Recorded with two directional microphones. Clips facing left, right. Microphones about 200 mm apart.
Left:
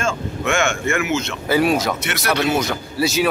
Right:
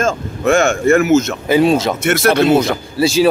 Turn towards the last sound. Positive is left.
turn(degrees=-30)  # may be behind; listen again after turning